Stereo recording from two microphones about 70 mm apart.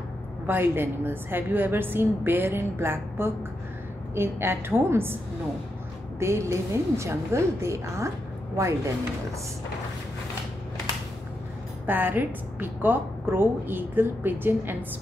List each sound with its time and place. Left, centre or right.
0.5 s a woman's voice: right
11.8 s a woman's voice: right